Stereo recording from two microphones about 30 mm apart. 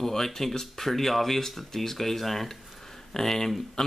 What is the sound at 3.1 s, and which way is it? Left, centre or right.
Speech, centre.